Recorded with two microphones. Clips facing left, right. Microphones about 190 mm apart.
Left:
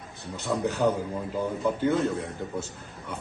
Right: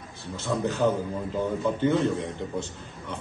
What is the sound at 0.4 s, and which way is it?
A man's voice, 15° left (ahead or behind).